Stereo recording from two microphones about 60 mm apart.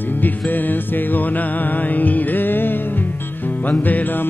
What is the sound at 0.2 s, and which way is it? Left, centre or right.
Music, left.